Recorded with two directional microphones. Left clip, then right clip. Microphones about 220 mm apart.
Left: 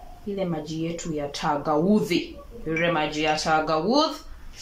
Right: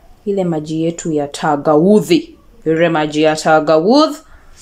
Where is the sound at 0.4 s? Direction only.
50° right (ahead or behind).